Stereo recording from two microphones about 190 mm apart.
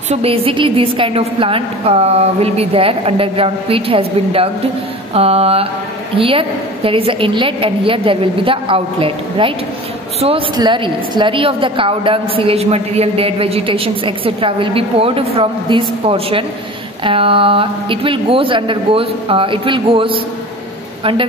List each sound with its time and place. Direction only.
0.1 s a woman's voice: 30° right (ahead or behind)
5.1 s a sound: 30° right (ahead or behind)
6.1 s a woman's voice: 30° right (ahead or behind)